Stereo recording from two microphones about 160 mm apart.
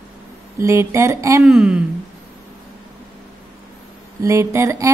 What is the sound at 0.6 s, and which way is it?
Speech, 15° right (ahead or behind).